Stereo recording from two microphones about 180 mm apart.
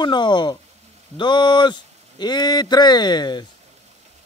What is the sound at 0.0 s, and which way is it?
Speech, 25° left (ahead or behind).